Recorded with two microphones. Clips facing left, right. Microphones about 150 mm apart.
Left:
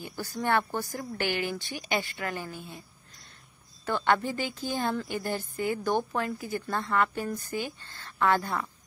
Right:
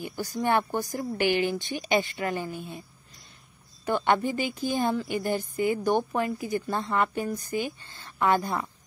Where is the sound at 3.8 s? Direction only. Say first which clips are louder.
Right 2 dB; 15° right (ahead or behind).